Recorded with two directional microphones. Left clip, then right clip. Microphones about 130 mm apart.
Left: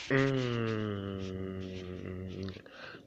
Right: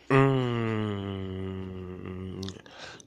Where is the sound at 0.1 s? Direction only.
50° right (ahead or behind).